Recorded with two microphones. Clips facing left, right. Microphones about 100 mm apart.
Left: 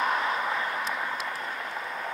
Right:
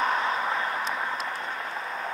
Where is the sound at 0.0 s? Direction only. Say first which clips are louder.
Right 1 dB; 35° right (ahead or behind).